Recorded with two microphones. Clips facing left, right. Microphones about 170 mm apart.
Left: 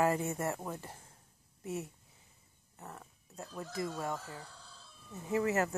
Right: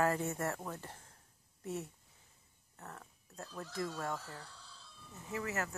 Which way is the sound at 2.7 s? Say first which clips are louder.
Left 2 dB; 10° left (ahead or behind).